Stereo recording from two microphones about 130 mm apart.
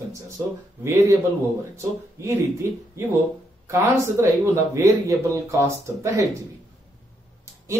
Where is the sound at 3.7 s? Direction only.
25° right (ahead or behind).